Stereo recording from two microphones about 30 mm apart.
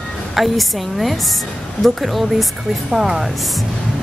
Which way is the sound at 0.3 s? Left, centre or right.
Centre.